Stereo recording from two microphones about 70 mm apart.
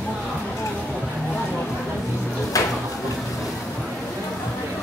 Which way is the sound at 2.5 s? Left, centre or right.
Left.